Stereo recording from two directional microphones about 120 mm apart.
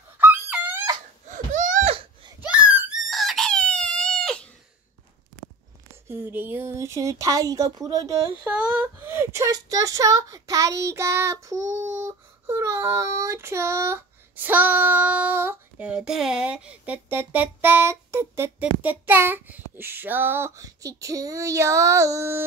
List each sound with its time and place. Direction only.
0.2 s a sound: 15° right (ahead or behind)
1.3 s a sound: 90° right
2.4 s wail: 10° right (ahead or behind)
3.1 s chicken: centre (ahead or behind)
6.0 s speech: 20° right (ahead or behind)
8.5 s speech: 15° right (ahead or behind)